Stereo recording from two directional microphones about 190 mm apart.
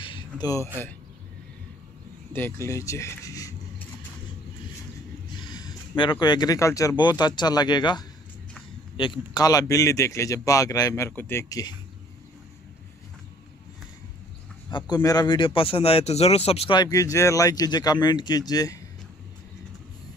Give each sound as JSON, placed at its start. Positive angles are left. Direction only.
{"t": 0.0, "sound": "a sound", "side_deg": 25}
{"t": 2.3, "sound": "a man's voice", "side_deg": 10}
{"t": 5.3, "sound": "a man's voice", "side_deg": 20}
{"t": 14.7, "sound": "speech", "side_deg": 25}